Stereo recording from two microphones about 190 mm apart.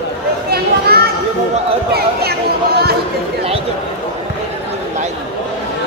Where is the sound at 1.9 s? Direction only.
55° right (ahead or behind).